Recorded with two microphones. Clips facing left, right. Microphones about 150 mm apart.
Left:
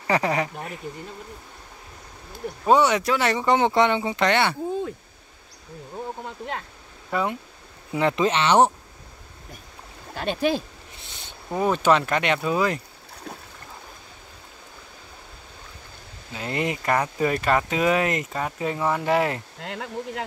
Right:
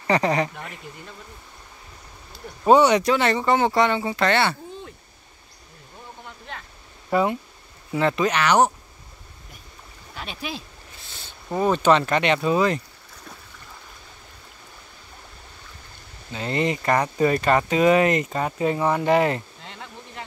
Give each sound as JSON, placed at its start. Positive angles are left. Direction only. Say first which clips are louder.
{"t": 0.0, "sound": "speech", "louder": "right 2 dB", "side_deg": 5}
{"t": 2.6, "sound": "speech", "louder": "right 3 dB", "side_deg": 0}
{"t": 7.1, "sound": "speech", "louder": "right 4 dB", "side_deg": -5}
{"t": 7.9, "sound": "speech", "louder": "even", "side_deg": 15}
{"t": 8.3, "sound": "speech", "louder": "left 2 dB", "side_deg": 25}
{"t": 10.1, "sound": "speech", "louder": "left 10 dB", "side_deg": 50}
{"t": 11.5, "sound": "speech", "louder": "right 1 dB", "side_deg": 5}
{"t": 16.3, "sound": "speech", "louder": "right 3 dB", "side_deg": 5}
{"t": 19.6, "sound": "speech", "louder": "left 9 dB", "side_deg": 90}